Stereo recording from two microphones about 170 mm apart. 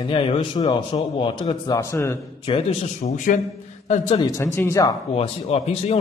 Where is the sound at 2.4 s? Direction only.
35° left (ahead or behind).